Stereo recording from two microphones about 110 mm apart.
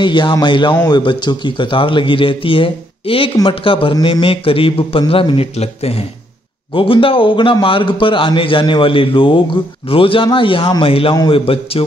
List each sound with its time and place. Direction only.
0.0 s a man's voice: 45° left (ahead or behind)
5.6 s a man's voice: 65° left (ahead or behind)
6.7 s a man's voice: 50° left (ahead or behind)